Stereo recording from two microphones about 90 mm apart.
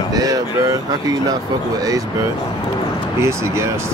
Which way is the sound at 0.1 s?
45° right (ahead or behind).